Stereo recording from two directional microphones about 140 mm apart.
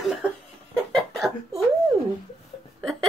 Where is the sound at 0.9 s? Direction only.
Centre (ahead or behind).